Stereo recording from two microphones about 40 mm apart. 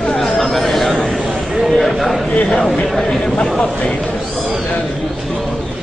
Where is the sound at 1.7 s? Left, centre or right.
Centre.